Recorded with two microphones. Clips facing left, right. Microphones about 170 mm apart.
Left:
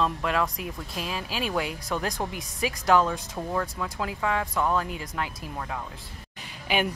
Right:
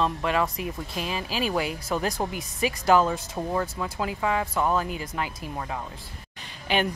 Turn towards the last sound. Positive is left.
turn(degrees=10)  # may be behind; listen again after turning